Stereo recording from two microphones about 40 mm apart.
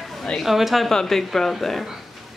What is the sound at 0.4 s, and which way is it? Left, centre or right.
Speech, centre.